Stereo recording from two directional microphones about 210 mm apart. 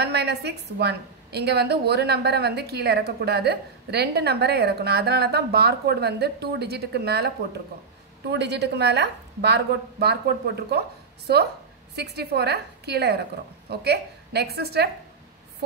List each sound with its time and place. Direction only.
0.0 s a woman's voice: 50° right (ahead or behind)